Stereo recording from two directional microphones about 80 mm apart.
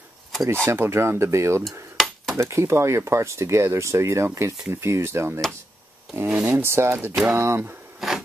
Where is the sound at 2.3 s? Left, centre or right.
Right.